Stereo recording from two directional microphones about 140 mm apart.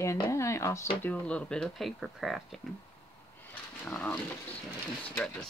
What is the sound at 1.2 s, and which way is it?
Speech, 10° left (ahead or behind).